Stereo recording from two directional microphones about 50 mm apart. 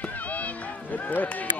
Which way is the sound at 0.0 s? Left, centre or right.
Left.